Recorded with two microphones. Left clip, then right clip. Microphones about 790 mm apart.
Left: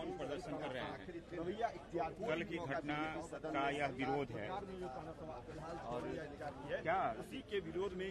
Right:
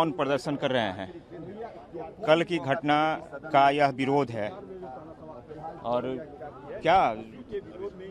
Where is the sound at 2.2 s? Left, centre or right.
Right.